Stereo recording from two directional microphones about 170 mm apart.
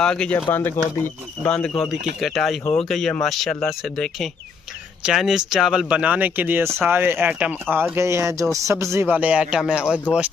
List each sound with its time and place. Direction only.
0.0 s speech: 5° left (ahead or behind)